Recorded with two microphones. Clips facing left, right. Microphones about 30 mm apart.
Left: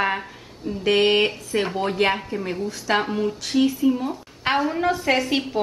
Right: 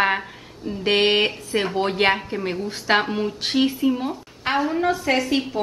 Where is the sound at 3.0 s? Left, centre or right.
Centre.